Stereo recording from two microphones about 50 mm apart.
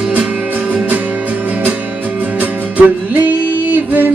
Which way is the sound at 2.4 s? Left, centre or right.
Right.